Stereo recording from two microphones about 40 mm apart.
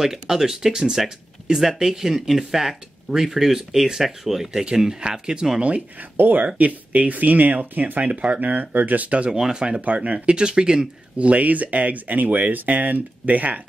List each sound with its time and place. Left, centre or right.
0.0 s speech: centre
5.9 s speech: right
6.3 s speech: right
8.4 s speech: right
9.3 s speech: centre
11.1 s speech: right